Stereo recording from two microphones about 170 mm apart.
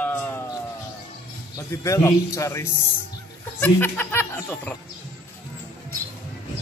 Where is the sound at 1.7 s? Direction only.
15° left (ahead or behind).